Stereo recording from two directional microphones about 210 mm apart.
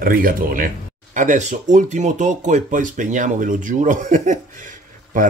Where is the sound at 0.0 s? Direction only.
40° right (ahead or behind).